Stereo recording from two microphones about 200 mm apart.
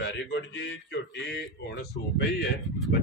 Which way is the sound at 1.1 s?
60° left (ahead or behind).